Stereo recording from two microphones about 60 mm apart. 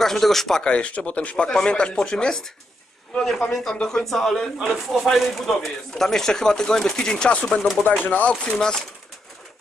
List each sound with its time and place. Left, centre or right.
0.0 s speech: centre
3.7 s speech: centre
4.0 s speech: centre
7.8 s speech: left
8.3 s speech: centre